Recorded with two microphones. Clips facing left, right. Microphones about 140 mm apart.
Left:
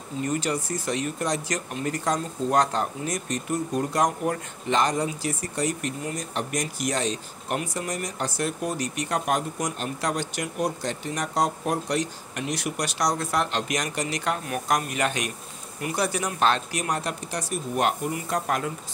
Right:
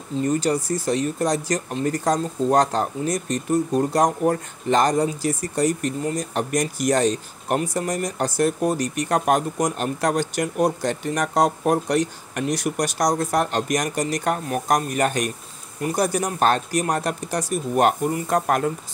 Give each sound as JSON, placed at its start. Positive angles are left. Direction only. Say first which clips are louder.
{"t": 0.2, "sound": "speech", "louder": "right 5 dB", "side_deg": -35}